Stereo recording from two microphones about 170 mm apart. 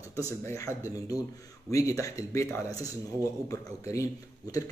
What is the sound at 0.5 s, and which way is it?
Speech, 20° left (ahead or behind).